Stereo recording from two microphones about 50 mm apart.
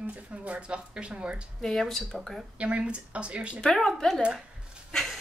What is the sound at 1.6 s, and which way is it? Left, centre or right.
Speech, centre.